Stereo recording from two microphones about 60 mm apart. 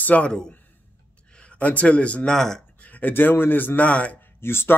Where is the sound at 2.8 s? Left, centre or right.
Left.